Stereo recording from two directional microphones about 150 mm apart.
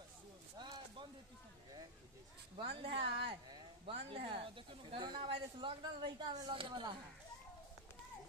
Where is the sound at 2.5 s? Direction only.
35° right (ahead or behind).